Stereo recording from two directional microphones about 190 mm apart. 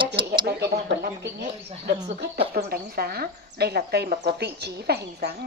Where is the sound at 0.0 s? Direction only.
25° right (ahead or behind).